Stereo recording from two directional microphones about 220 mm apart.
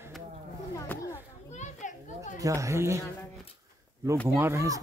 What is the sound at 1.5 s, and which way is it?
Children playing, 35° left (ahead or behind).